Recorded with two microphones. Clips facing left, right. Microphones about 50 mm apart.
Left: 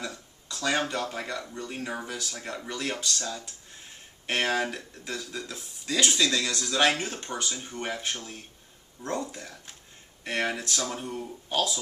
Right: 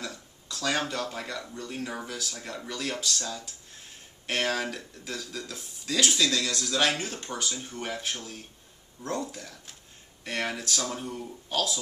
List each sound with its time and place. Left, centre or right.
0.0 s speech: centre
11.1 s speech: centre